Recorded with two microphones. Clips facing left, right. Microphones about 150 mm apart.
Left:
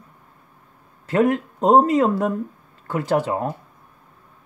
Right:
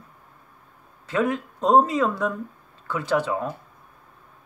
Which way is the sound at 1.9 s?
55° left (ahead or behind).